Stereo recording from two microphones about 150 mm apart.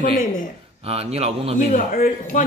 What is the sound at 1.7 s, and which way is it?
Speech, 70° left (ahead or behind).